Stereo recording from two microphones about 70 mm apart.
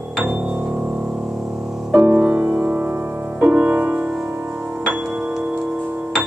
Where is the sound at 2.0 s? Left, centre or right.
Centre.